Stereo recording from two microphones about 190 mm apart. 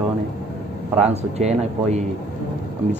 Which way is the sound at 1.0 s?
35° right (ahead or behind).